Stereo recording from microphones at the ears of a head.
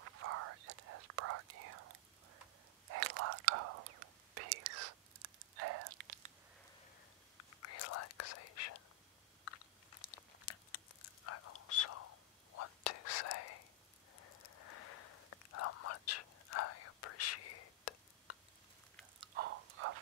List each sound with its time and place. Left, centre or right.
0.0 s whispering: right
7.3 s whispering: left
9.4 s crunch: left
14.2 s whispering: left
19.1 s a sound: right